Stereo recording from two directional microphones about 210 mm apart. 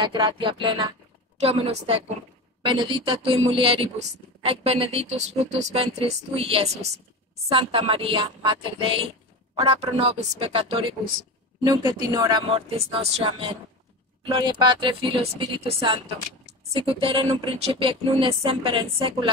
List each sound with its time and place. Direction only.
0.0 s a woman's voice: 25° right (ahead or behind)